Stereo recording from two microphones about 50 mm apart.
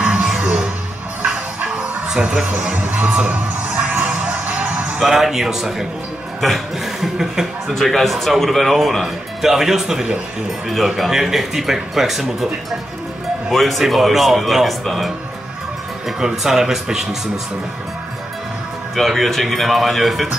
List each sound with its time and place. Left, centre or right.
0.0 s music: right
2.0 s speech: centre
3.2 s music: right
4.9 s speech: centre
13.5 s speech: centre
16.2 s speech: centre
18.9 s speech: centre